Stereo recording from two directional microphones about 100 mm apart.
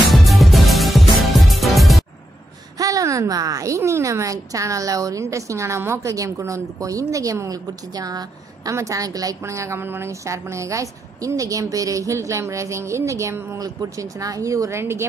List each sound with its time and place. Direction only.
0.1 s music: centre (ahead or behind)
2.8 s a woman's voice: 35° right (ahead or behind)